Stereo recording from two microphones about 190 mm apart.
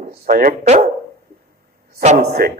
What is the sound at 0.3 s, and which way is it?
Speech, 50° right (ahead or behind).